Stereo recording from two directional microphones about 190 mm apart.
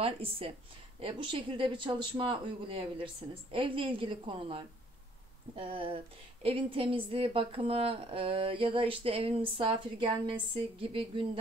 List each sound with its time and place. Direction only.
0.0 s a woman's voice: 30° right (ahead or behind)